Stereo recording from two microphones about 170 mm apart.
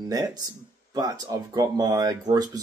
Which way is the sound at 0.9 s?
20° right (ahead or behind).